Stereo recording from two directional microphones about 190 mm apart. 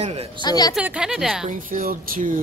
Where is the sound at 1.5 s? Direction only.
45° right (ahead or behind).